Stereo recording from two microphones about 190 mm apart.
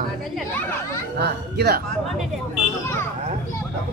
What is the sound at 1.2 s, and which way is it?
Speech, 60° right (ahead or behind).